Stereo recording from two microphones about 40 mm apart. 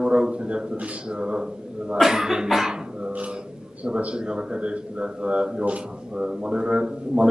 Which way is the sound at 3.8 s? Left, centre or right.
Right.